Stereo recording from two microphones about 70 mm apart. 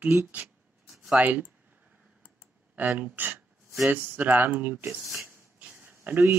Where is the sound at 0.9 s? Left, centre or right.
Centre.